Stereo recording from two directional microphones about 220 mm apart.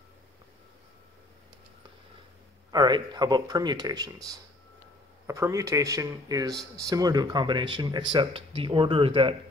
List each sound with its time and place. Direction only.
2.7 s speech: 20° right (ahead or behind)